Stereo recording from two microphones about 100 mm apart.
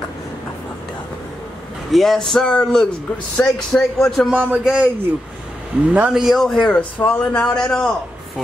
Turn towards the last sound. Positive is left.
turn(degrees=5)  # may be behind; listen again after turning